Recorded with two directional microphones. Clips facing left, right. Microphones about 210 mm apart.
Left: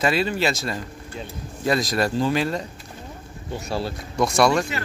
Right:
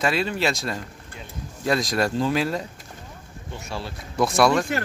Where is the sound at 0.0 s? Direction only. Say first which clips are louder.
Left 2 dB; centre (ahead or behind).